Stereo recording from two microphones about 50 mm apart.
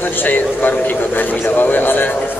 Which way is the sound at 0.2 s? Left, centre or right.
Left.